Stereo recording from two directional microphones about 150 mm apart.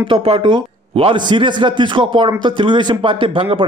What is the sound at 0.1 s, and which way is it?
A man's voice, 35° right (ahead or behind).